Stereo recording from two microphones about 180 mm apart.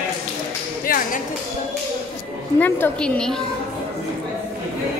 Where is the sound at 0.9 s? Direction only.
55° left (ahead or behind).